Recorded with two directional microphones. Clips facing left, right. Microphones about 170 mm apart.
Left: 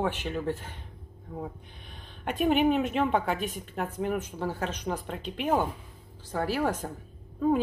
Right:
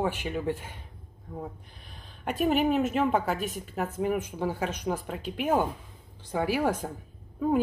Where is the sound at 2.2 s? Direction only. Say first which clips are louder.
Left 1 dB; centre (ahead or behind).